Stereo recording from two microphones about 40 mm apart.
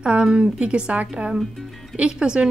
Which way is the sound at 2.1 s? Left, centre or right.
Right.